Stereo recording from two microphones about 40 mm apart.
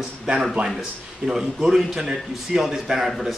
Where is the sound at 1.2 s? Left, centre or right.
Centre.